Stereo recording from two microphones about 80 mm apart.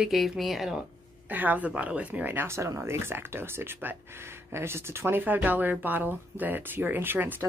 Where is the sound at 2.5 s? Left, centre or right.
Right.